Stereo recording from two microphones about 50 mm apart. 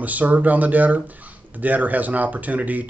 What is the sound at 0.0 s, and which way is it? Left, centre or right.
Speech, right.